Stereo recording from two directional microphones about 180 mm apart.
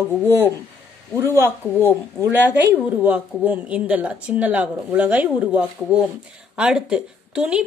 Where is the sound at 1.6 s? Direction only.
10° left (ahead or behind).